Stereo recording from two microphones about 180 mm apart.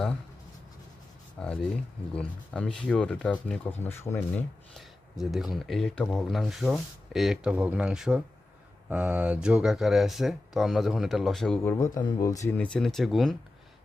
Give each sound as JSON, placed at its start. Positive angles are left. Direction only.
{"t": 1.4, "sound": "speech", "side_deg": 5}
{"t": 4.7, "sound": "speech", "side_deg": 0}
{"t": 11.7, "sound": "speech", "side_deg": 15}
{"t": 12.5, "sound": "speech", "side_deg": 5}